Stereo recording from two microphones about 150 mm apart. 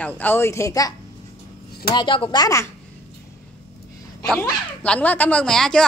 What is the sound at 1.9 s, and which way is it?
Speech, 35° left (ahead or behind).